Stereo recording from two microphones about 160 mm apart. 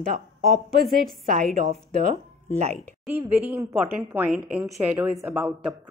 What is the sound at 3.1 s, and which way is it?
A woman's voice, 15° right (ahead or behind).